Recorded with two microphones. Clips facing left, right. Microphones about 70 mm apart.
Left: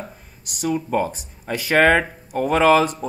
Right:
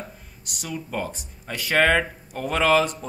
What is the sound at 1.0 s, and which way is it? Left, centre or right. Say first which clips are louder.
Speech: left 6 dB; centre.